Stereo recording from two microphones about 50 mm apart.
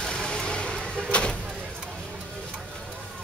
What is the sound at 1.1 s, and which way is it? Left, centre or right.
Vehicle, left.